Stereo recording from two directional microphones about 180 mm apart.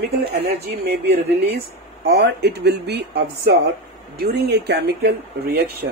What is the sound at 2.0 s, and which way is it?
Speech, 65° right (ahead or behind).